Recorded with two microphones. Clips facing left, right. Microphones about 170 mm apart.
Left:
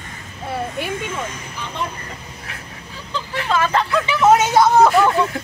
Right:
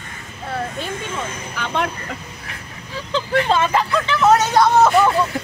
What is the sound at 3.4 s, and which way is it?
Speech, 25° right (ahead or behind).